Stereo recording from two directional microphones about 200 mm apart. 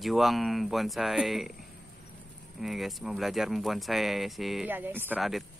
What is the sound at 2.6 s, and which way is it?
Speech, centre (ahead or behind).